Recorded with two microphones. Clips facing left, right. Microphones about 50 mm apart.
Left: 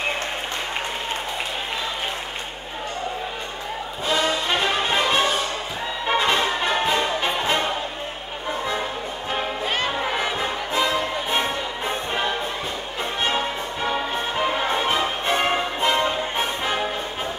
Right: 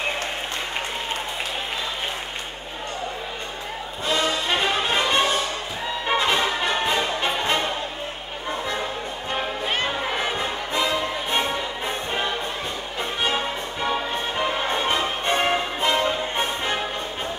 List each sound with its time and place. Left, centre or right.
4.1 s music: centre
10.3 s music: centre